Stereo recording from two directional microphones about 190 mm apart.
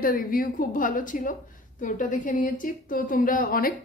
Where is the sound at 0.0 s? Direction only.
50° left (ahead or behind).